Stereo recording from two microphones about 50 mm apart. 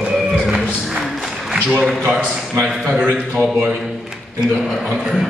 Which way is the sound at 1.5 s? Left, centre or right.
Right.